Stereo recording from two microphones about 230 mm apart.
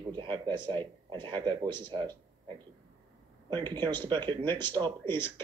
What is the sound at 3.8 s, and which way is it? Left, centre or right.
Speech, centre.